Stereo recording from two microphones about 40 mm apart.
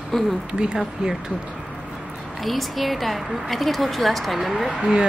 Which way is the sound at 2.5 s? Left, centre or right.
Centre.